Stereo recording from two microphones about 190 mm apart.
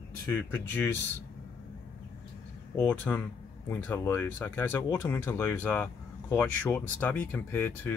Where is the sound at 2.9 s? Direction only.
10° left (ahead or behind).